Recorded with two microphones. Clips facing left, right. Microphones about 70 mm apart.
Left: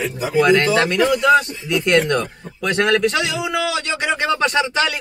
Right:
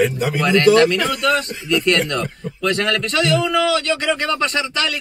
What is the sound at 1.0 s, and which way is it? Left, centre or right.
Speech, centre.